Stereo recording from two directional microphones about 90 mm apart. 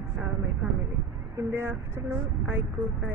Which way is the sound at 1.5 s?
25° right (ahead or behind).